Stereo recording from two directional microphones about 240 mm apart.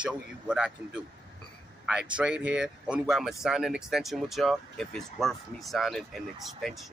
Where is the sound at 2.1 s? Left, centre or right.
Centre.